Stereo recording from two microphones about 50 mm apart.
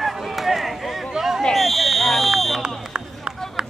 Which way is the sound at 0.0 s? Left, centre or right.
Centre.